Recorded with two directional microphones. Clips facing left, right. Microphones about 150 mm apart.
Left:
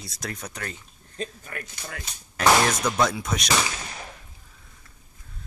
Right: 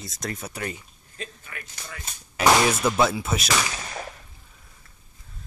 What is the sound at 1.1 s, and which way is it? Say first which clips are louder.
Speech: left 5 dB; 40° left (ahead or behind).